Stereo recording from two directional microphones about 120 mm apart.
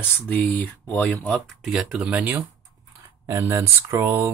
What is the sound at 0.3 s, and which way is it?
Speech, 15° left (ahead or behind).